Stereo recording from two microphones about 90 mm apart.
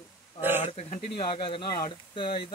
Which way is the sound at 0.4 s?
25° right (ahead or behind).